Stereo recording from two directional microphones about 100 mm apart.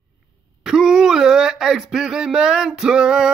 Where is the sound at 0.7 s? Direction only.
5° right (ahead or behind).